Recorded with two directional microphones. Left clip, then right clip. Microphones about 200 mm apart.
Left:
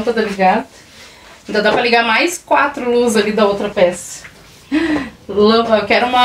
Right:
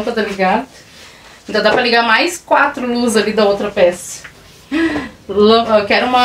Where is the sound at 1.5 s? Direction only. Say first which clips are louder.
Right 1 dB; centre (ahead or behind).